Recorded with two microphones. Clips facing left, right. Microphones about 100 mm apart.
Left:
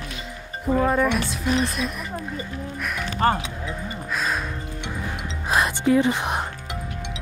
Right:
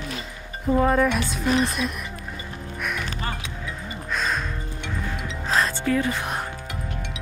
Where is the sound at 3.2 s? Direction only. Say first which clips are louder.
Left 15 dB; 55° left (ahead or behind).